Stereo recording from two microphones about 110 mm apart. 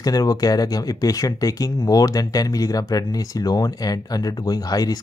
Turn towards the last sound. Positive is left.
turn(degrees=35)  # may be behind; listen again after turning